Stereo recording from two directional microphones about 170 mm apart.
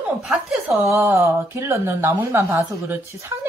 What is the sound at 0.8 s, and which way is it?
Speech, 15° right (ahead or behind).